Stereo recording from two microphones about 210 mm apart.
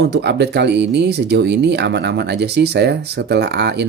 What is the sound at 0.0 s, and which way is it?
Speech, 55° right (ahead or behind).